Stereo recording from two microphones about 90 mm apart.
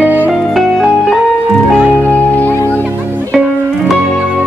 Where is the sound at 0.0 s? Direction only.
20° right (ahead or behind).